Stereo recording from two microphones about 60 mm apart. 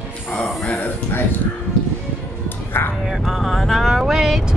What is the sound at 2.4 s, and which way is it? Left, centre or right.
Music, left.